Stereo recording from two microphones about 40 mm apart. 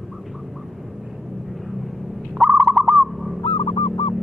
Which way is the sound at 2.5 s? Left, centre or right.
Right.